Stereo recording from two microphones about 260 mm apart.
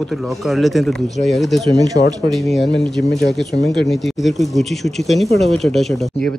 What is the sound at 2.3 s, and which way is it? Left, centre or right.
Speech, centre.